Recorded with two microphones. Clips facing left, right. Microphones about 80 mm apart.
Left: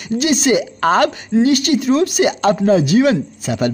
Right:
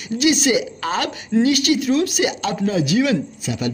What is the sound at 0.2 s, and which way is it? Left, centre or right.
A woman's voice, left.